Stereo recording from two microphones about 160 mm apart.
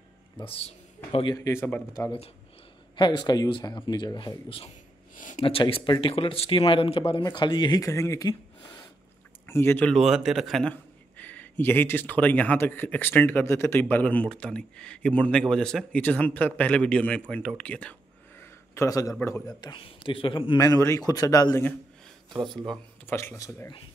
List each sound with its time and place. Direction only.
0.4 s speech: 35° left (ahead or behind)
1.3 s a man's voice: 20° left (ahead or behind)
3.0 s speech: 30° left (ahead or behind)
5.1 s a sound: 55° left (ahead or behind)
5.4 s speech: 35° left (ahead or behind)
9.5 s a man's voice: 15° left (ahead or behind)
9.9 s a man's voice: 5° right (ahead or behind)
18.4 s a sound: 20° left (ahead or behind)
19.1 s speech: 15° left (ahead or behind); by 20.5 s 30° left (ahead or behind)
20.5 s speech: 20° left (ahead or behind)
22.3 s speech: 30° right (ahead or behind)
23.0 s a man's voice: 15° left (ahead or behind)